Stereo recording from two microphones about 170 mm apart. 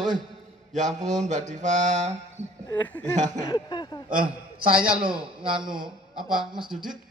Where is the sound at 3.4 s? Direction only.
25° left (ahead or behind).